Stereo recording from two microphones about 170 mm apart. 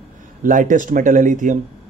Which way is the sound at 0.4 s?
50° right (ahead or behind).